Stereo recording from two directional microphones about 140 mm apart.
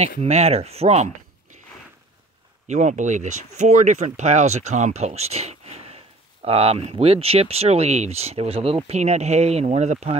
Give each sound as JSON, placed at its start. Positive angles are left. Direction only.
{"t": 0.2, "sound": "speech", "side_deg": -50}
{"t": 2.7, "sound": "speech", "side_deg": -60}